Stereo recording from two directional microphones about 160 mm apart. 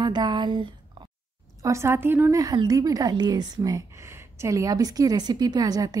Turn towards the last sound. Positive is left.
turn(degrees=-25)  # may be behind; listen again after turning